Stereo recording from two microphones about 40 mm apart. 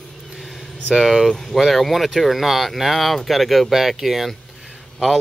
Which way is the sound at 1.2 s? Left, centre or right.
Centre.